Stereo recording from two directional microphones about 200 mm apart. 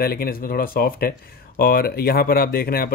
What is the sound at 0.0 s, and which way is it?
Speech, 50° left (ahead or behind).